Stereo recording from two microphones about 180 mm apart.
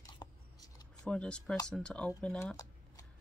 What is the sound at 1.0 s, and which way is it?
Speech, 5° left (ahead or behind).